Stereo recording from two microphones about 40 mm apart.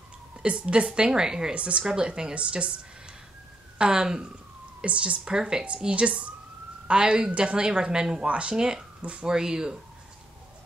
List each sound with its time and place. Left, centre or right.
0.4 s speech: right
1.5 s speech: right
5.9 s speech: right
8.3 s speech: right
8.5 s speech: centre